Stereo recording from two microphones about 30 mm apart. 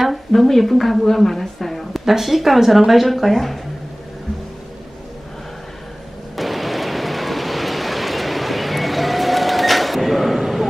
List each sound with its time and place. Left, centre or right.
0.3 s speech: centre
2.0 s speech: centre
6.3 s music: centre